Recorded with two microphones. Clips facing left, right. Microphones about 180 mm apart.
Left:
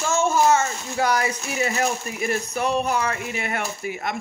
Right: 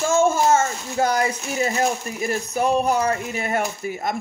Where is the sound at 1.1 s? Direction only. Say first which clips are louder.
Right 2 dB; 30° right (ahead or behind).